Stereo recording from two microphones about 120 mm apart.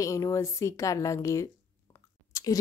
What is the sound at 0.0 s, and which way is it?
A woman's voice, 25° left (ahead or behind).